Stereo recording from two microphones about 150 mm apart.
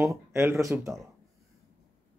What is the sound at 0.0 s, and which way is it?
Speech, 20° right (ahead or behind).